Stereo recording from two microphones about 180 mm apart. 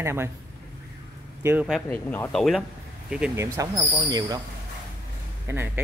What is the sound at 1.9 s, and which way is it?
Speech, 10° left (ahead or behind).